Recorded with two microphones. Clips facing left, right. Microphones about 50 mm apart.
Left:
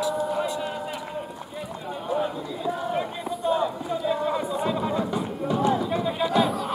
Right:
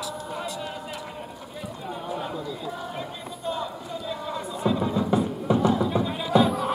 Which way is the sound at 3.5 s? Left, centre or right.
Left.